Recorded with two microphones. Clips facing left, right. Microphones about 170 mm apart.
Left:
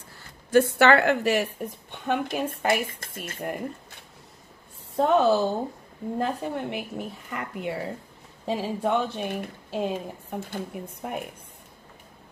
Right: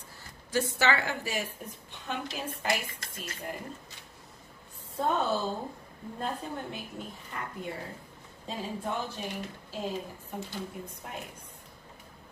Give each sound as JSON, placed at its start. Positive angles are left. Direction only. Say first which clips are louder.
{"t": 0.5, "sound": "speech", "louder": "left 10 dB", "side_deg": 60}
{"t": 4.9, "sound": "a woman's voice", "louder": "left 9 dB", "side_deg": 85}